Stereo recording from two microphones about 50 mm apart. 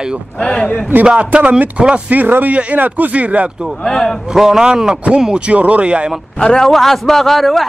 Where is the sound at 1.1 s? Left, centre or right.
Right.